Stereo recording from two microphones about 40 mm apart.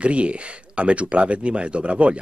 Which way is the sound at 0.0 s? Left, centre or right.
Right.